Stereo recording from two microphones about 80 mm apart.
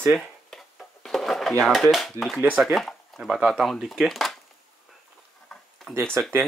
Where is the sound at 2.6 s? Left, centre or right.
Centre.